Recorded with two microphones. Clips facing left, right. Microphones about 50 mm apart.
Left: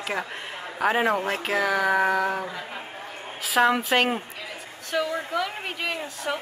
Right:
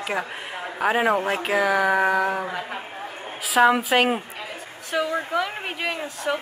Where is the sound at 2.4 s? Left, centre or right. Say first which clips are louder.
Right 4 dB; right.